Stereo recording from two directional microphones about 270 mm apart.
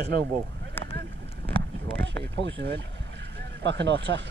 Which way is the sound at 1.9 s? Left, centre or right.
Right.